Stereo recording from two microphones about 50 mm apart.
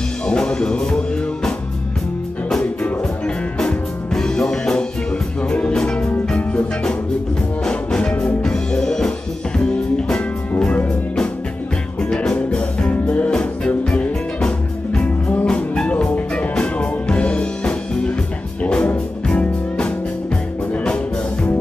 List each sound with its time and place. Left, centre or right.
0.3 s music: centre
2.5 s music: centre
8.1 s music: left
8.4 s music: centre
12.0 s music: centre
20.7 s music: left